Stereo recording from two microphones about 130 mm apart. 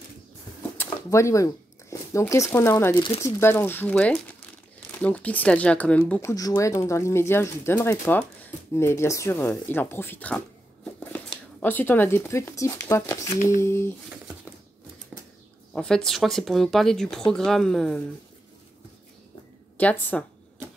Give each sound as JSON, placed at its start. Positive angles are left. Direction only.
{"t": 0.6, "sound": "a sound", "side_deg": 15}
{"t": 3.2, "sound": "speech", "side_deg": 20}
{"t": 6.2, "sound": "speech", "side_deg": 30}
{"t": 15.7, "sound": "speech", "side_deg": 5}
{"t": 19.8, "sound": "speech", "side_deg": 10}